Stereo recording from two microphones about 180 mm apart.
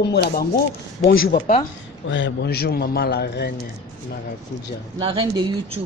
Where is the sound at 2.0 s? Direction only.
90° left; by 3.5 s 60° left (ahead or behind).